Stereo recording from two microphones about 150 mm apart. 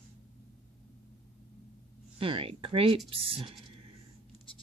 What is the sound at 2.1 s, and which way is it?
Speech, 35° right (ahead or behind).